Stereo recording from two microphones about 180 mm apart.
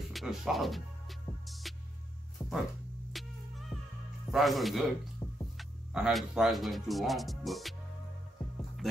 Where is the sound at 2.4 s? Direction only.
20° left (ahead or behind).